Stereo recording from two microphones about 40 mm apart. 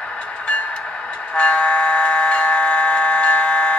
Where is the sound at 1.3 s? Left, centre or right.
Left.